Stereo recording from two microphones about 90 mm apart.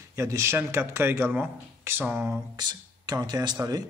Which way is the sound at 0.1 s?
35° right (ahead or behind).